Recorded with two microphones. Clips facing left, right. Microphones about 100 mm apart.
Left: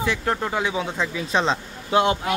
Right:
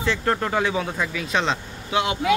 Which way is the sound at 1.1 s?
35° left (ahead or behind).